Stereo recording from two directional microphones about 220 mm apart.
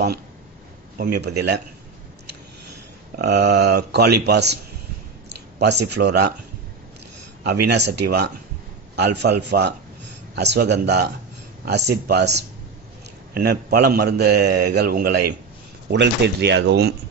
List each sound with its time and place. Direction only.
0.9 s a man's voice: 45° right (ahead or behind)
3.2 s a man's voice: 50° right (ahead or behind)
5.6 s a man's voice: 50° right (ahead or behind)
7.4 s a man's voice: 50° right (ahead or behind)